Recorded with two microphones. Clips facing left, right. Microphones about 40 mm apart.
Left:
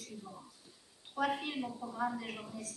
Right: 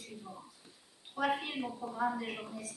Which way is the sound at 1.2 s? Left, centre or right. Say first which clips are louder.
Right 1 dB; centre.